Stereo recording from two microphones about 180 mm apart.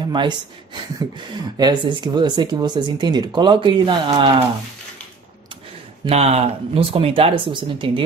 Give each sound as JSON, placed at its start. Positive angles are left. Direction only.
{"t": 0.0, "sound": "speech", "side_deg": -25}
{"t": 6.0, "sound": "speech", "side_deg": -35}